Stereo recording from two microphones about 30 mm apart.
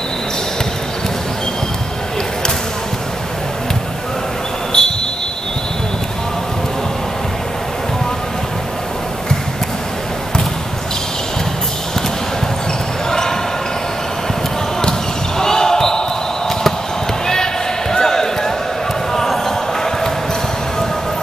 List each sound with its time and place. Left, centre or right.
4.7 s a sound: centre
14.8 s basketball bounce: left
17.9 s basketball bounce: centre